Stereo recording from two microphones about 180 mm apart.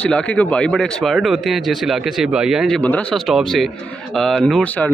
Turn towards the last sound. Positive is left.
turn(degrees=5)  # may be behind; listen again after turning